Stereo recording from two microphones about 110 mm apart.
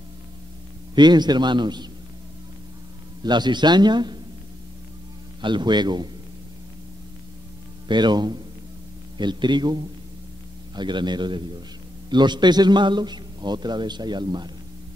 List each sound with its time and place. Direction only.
0.9 s a man's voice: 40° right (ahead or behind)
3.3 s a man's voice: 40° right (ahead or behind)
5.4 s a man's voice: 45° right (ahead or behind)
7.9 s a man's voice: 40° right (ahead or behind)